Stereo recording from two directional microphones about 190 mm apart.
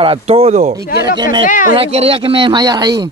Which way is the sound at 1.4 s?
40° left (ahead or behind).